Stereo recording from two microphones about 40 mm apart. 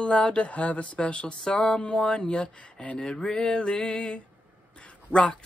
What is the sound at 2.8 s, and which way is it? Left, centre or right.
Speech, left.